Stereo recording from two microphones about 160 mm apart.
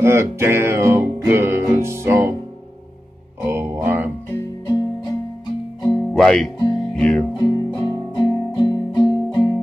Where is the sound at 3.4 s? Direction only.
15° right (ahead or behind).